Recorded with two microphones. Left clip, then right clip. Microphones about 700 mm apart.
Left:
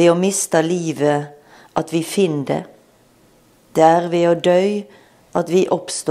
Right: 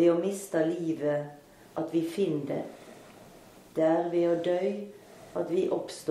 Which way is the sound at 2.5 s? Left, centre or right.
Left.